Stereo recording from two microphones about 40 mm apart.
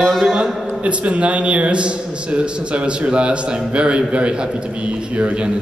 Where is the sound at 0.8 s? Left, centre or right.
Right.